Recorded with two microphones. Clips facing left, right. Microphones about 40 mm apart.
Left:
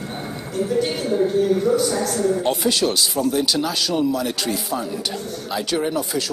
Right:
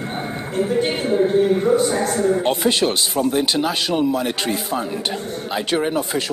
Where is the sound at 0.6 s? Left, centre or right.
Right.